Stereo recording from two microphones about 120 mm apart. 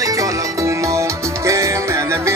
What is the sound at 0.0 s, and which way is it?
Music, 30° right (ahead or behind).